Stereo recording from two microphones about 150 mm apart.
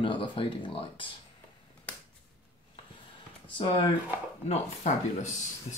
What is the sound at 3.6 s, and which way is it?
Speech, 35° left (ahead or behind).